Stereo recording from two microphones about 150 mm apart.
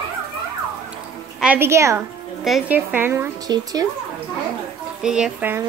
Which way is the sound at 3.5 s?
25° right (ahead or behind).